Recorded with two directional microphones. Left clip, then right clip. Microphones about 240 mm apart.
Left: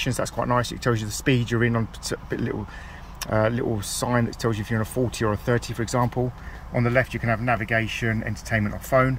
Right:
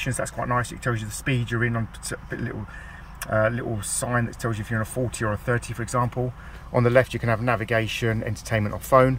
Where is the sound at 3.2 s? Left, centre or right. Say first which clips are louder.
Even; centre.